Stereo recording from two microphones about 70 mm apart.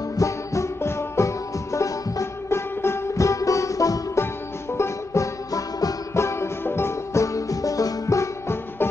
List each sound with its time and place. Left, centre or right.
0.2 s music: left
4.7 s music: left
6.1 s music: left
7.3 s music: left